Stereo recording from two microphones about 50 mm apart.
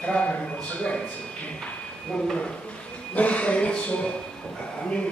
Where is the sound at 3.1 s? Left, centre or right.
Left.